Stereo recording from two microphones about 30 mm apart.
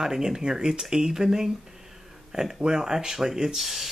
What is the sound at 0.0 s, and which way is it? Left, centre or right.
Speech, centre.